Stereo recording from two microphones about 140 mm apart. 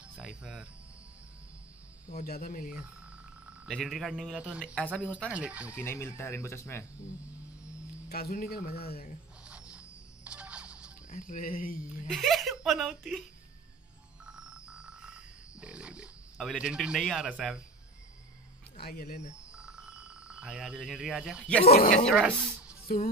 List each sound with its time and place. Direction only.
0.0 s music: 10° right (ahead or behind)
2.0 s speech: 80° left
3.6 s speech: centre (ahead or behind)
5.8 s speech: 20° left (ahead or behind)
8.1 s speech: 90° left
9.5 s a sound: 10° right (ahead or behind)
11.1 s speech: 70° left (ahead or behind); by 12.1 s 85° left
12.1 s speech: centre (ahead or behind)
14.2 s frog: 5° right (ahead or behind)
18.8 s speech: 90° left
19.3 s a sound: 5° right (ahead or behind)
21.6 s speech: 90° left
22.1 s speech: 10° right (ahead or behind)